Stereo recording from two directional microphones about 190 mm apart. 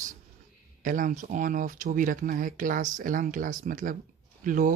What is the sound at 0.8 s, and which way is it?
Speech, 45° right (ahead or behind).